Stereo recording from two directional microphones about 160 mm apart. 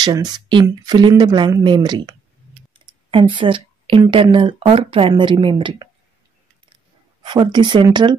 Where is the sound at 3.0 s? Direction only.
30° right (ahead or behind).